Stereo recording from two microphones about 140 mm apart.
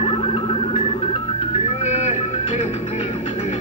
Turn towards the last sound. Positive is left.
turn(degrees=55)  # may be behind; listen again after turning